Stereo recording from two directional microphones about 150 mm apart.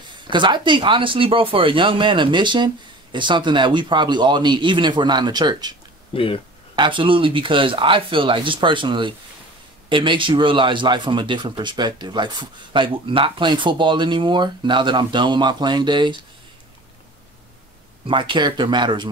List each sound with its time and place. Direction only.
0.3 s a man's voice: 30° right (ahead or behind)
6.1 s speech: 35° left (ahead or behind)
6.7 s a man's voice: 30° right (ahead or behind)
18.0 s a man's voice: 35° right (ahead or behind)